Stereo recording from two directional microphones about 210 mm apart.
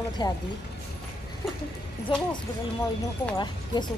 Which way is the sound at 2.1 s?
25° left (ahead or behind).